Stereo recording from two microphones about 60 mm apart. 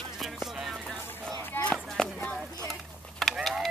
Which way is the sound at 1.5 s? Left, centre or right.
Left.